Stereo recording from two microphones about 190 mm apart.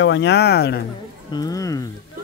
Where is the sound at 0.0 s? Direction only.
70° left (ahead or behind).